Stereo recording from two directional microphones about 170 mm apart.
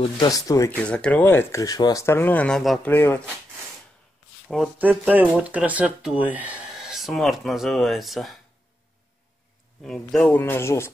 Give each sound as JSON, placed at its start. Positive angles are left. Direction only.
{"t": 0.0, "sound": "speech", "side_deg": 25}
{"t": 0.7, "sound": "speech", "side_deg": 5}
{"t": 4.5, "sound": "speech", "side_deg": -5}
{"t": 9.8, "sound": "speech", "side_deg": 5}